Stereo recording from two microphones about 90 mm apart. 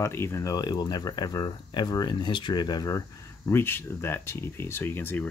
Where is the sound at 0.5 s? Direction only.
50° left (ahead or behind); by 5.3 s 25° left (ahead or behind).